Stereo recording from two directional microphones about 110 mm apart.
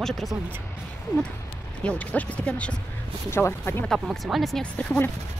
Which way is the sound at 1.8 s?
15° left (ahead or behind).